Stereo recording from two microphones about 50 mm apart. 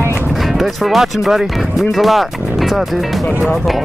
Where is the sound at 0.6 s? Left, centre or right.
Centre.